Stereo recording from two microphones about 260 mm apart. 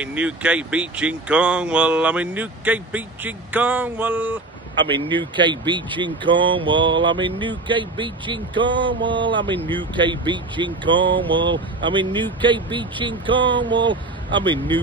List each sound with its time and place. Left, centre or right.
0.0 s speech: centre
4.9 s speech: centre